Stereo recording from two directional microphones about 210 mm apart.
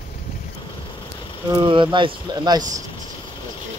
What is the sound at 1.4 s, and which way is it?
Speech, 20° right (ahead or behind).